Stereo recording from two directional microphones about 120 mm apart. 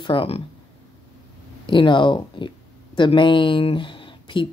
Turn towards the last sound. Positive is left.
turn(degrees=45)  # may be behind; listen again after turning